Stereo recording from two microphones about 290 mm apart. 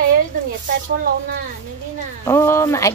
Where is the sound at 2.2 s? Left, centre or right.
Centre.